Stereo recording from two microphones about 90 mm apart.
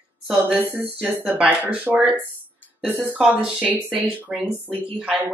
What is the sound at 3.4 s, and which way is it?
Speech, 15° right (ahead or behind).